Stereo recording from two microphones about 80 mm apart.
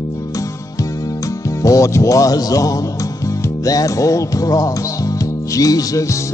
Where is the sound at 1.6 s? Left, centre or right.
Left.